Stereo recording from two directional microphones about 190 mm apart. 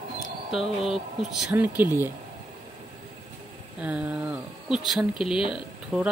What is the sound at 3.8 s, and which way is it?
Speech, 5° right (ahead or behind).